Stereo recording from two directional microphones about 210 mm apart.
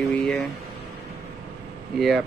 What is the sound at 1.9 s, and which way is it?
Speech, centre (ahead or behind).